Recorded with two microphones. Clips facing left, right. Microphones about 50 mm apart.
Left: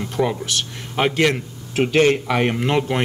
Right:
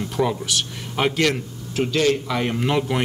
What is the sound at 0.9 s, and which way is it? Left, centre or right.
Speech, centre.